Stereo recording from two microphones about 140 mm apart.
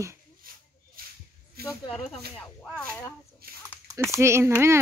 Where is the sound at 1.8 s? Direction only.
45° left (ahead or behind).